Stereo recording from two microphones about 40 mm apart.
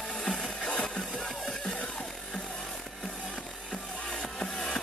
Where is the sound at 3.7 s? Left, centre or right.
Centre.